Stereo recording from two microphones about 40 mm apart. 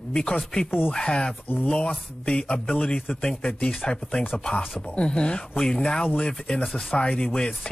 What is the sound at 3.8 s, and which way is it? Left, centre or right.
A woman's voice, left.